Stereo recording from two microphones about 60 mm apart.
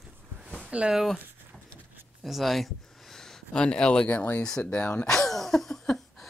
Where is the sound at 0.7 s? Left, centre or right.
Centre.